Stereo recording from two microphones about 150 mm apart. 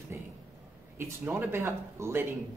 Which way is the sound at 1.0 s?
15° right (ahead or behind).